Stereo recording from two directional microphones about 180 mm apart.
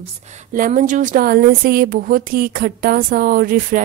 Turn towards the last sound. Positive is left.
turn(degrees=-50)  # may be behind; listen again after turning